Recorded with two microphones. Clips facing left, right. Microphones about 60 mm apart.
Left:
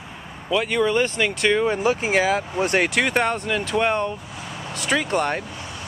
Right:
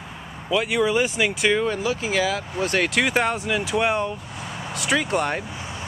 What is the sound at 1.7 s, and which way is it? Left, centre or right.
Speech, left.